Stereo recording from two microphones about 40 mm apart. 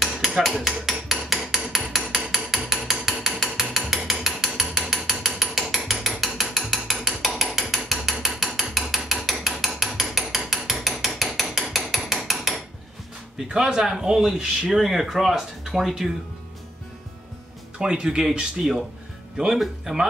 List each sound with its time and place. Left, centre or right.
0.7 s hammer: centre
3.7 s ratchet: centre
7.3 s hammer: centre
13.5 s speech: centre
17.7 s speech: right; by 20.1 s centre